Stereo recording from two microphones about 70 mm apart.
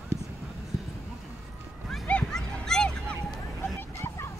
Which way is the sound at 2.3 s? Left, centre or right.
Centre.